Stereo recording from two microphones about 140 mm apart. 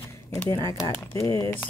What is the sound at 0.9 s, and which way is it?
Speech, 20° left (ahead or behind).